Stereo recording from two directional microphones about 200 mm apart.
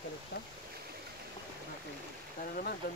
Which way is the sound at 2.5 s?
45° left (ahead or behind).